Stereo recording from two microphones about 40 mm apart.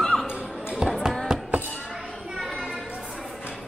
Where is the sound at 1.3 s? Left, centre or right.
Centre.